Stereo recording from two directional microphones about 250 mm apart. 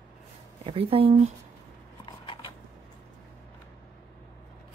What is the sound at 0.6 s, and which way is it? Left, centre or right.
Speech, right.